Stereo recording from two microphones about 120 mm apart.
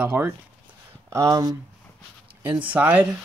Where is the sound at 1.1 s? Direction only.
30° right (ahead or behind).